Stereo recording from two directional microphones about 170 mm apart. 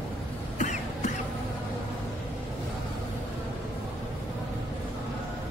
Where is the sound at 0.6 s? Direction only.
45° left (ahead or behind).